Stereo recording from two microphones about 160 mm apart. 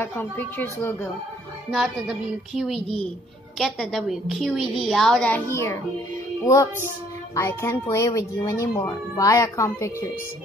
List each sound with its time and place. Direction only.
0.0 s speech: 15° left (ahead or behind)
1.7 s a woman's voice: centre (ahead or behind); by 10.1 s 20° left (ahead or behind)